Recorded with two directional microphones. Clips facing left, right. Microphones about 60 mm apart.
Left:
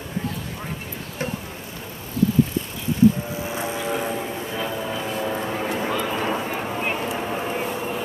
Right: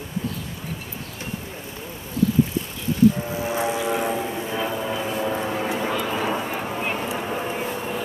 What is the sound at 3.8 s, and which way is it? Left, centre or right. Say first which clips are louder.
Vehicle: right 2 dB; centre.